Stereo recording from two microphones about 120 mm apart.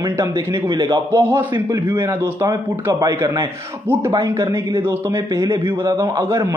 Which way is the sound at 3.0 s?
35° right (ahead or behind).